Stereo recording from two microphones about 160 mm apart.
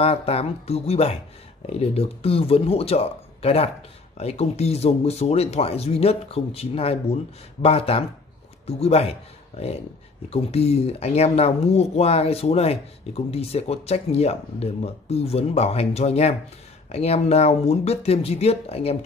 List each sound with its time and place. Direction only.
0.0 s speech: 40° left (ahead or behind)